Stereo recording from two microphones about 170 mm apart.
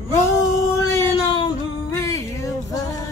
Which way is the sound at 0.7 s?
20° left (ahead or behind).